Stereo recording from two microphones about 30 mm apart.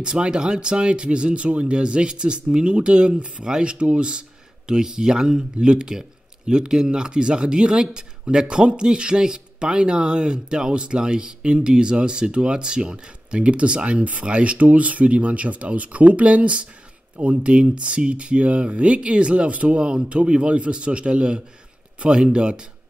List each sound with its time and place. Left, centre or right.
0.0 s speech: right
3.4 s speech: right
3.7 s speech: right
18.9 s speech: right
19.8 s speech: right